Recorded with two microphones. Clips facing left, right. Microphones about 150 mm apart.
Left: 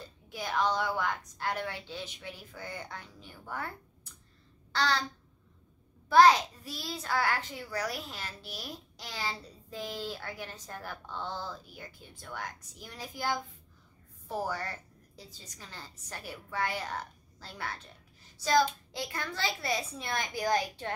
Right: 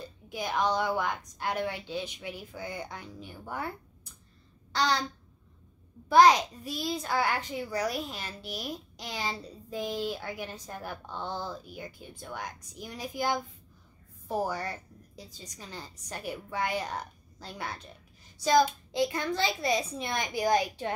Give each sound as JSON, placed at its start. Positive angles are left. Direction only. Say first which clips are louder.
{"t": 0.3, "sound": "a child's voice", "louder": "right 2 dB", "side_deg": -15}
{"t": 6.0, "sound": "a child's voice", "louder": "right 1 dB", "side_deg": -15}